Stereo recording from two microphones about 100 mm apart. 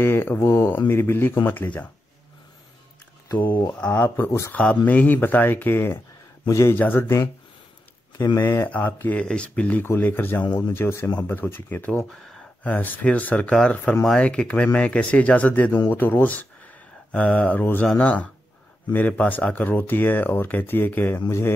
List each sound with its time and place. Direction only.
0.0 s speech: 20° left (ahead or behind)
3.3 s speech: 20° left (ahead or behind)
8.4 s speech: 20° left (ahead or behind)
12.1 s a sound: 5° left (ahead or behind)
12.6 s speech: 15° left (ahead or behind)